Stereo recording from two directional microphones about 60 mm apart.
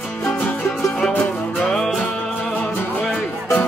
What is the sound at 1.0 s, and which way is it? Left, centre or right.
Music, centre.